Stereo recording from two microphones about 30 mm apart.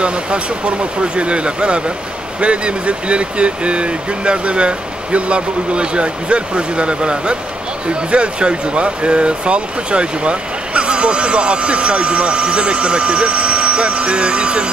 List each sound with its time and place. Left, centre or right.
0.0 s speech: right